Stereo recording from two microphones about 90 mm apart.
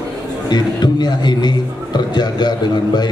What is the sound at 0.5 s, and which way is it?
A man's voice, 50° left (ahead or behind).